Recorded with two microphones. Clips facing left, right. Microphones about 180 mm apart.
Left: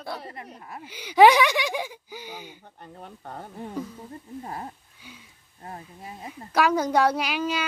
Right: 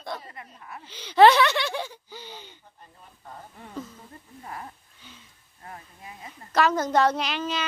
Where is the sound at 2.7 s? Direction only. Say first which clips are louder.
Left 10 dB; 65° left (ahead or behind).